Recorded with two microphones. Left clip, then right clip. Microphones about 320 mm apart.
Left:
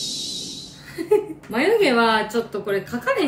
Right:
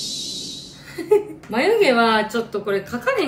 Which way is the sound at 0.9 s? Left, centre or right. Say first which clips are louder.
Right 2 dB; centre.